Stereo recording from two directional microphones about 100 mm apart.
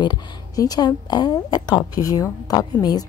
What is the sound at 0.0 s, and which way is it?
Speech, 45° left (ahead or behind).